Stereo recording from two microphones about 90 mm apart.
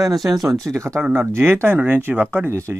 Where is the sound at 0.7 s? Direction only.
35° right (ahead or behind).